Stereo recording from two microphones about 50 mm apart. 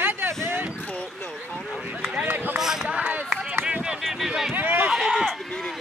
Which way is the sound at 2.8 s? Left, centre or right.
Right.